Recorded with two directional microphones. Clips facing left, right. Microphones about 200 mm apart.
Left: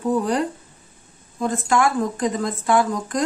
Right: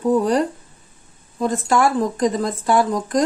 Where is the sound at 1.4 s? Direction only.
35° right (ahead or behind).